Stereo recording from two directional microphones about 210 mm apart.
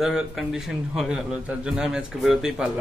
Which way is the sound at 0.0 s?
Centre (ahead or behind).